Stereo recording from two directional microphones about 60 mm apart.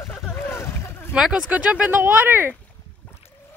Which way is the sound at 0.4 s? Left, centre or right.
Left.